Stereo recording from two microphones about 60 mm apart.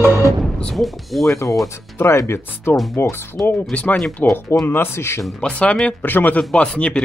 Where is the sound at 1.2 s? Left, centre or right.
Left.